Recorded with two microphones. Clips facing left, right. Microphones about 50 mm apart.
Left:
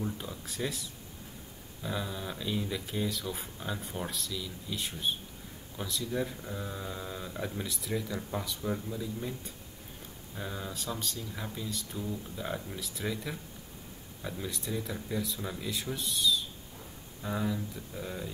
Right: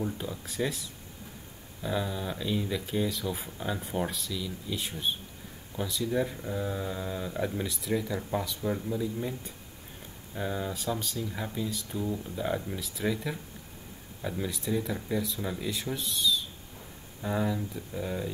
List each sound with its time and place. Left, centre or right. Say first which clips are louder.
0.0 s speech: right 3 dB; centre
10.3 s speech: right 6 dB; centre
17.2 s speech: right 3 dB; centre